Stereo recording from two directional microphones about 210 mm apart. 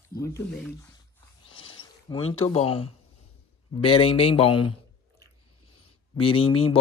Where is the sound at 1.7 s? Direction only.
25° left (ahead or behind).